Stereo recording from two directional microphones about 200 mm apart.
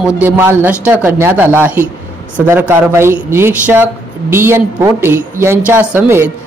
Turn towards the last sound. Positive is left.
turn(degrees=-10)  # may be behind; listen again after turning